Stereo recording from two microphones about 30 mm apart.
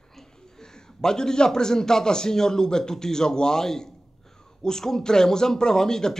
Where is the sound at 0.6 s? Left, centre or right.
Left.